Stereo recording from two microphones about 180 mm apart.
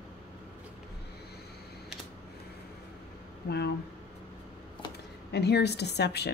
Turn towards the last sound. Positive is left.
turn(degrees=65)  # may be behind; listen again after turning